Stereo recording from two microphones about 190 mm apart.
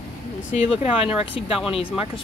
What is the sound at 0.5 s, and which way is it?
Speech, 35° left (ahead or behind).